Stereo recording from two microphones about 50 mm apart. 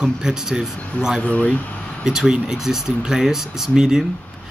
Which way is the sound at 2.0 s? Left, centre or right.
Centre.